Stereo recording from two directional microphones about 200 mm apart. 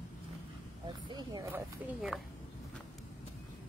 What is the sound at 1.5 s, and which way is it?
Speech, 5° right (ahead or behind).